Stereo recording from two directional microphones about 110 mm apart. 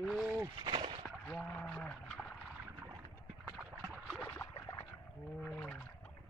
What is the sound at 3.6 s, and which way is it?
Boat, 5° right (ahead or behind).